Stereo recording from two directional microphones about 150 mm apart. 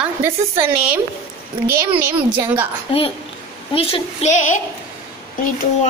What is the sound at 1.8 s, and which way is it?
Speech, 15° right (ahead or behind).